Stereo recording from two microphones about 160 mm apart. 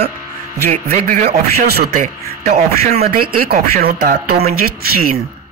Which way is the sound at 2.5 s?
45° right (ahead or behind).